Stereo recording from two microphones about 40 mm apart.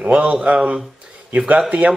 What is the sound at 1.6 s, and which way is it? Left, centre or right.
Speech, right.